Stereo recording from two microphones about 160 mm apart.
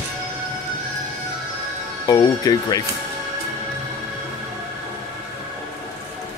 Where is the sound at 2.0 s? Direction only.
20° left (ahead or behind).